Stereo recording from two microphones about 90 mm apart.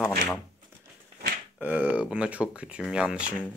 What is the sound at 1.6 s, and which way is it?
Speech, 20° right (ahead or behind).